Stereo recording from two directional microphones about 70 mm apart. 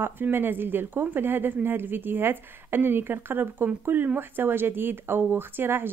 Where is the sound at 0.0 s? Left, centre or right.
Right.